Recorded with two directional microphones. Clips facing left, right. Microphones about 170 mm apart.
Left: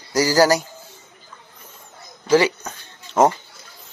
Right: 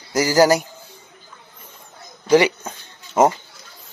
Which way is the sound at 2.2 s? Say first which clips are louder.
Right 1 dB; 15° right (ahead or behind).